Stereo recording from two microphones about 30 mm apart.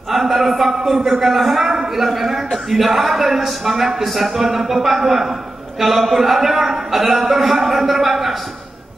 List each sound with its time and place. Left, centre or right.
0.1 s a man's voice: centre
1.7 s a sound: centre
2.0 s a man's voice: centre